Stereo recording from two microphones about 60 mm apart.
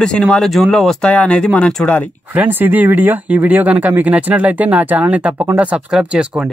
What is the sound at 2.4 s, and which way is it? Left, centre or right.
Speech, right.